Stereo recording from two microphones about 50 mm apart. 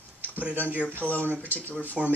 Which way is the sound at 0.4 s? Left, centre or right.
Right.